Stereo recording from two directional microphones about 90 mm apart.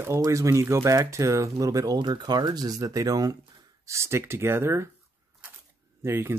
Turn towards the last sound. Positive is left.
turn(degrees=-30)  # may be behind; listen again after turning